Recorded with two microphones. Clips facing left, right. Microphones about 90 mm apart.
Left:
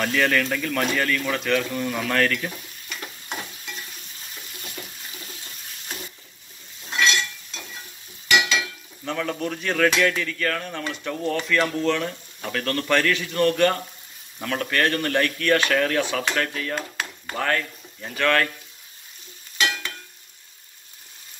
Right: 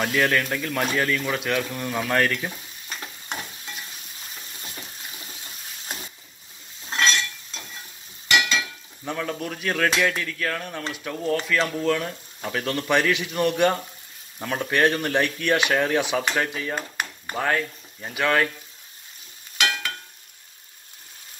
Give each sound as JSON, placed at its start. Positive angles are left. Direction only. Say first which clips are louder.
{"t": 0.0, "sound": "speech", "louder": "even", "side_deg": -5}
{"t": 2.9, "sound": "stir", "louder": "even", "side_deg": -40}
{"t": 6.9, "sound": "stir", "louder": "left 1 dB", "side_deg": -35}
{"t": 8.3, "sound": "stir", "louder": "left 1 dB", "side_deg": 0}
{"t": 9.0, "sound": "a sound", "louder": "left 2 dB", "side_deg": -10}
{"t": 10.9, "sound": "speech", "louder": "right 1 dB", "side_deg": -5}